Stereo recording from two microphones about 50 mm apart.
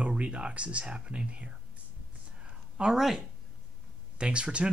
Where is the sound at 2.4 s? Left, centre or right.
Centre.